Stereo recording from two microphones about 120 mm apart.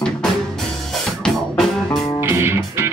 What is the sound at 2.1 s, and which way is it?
Music, 20° right (ahead or behind).